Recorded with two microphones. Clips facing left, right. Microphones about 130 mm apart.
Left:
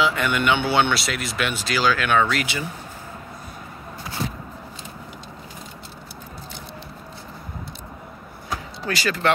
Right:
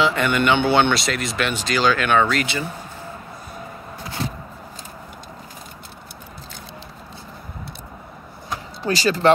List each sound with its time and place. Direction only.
0.0 s speech: 5° left (ahead or behind)
8.8 s speech: 35° right (ahead or behind)